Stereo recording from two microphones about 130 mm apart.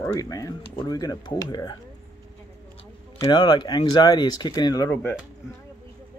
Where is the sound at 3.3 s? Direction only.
40° left (ahead or behind).